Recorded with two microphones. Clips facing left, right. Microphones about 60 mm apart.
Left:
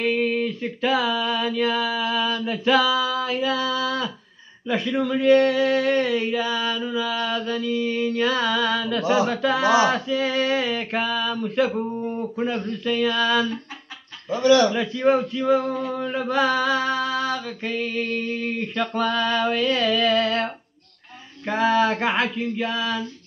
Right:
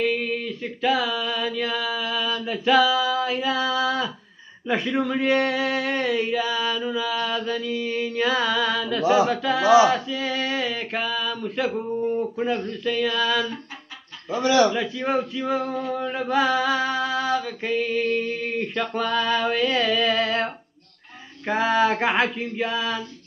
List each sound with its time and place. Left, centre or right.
0.0 s a sound: centre
4.6 s speech: centre
14.3 s speech: centre
14.7 s speech: centre
21.5 s speech: centre